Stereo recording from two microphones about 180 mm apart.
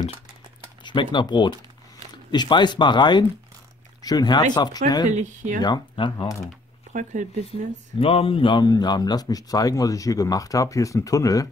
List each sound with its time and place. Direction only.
0.8 s speech: 25° left (ahead or behind)
5.1 s speech: 40° right (ahead or behind)
5.6 s speech: 25° left (ahead or behind)
6.9 s speech: 45° right (ahead or behind)
8.0 s speech: 30° left (ahead or behind)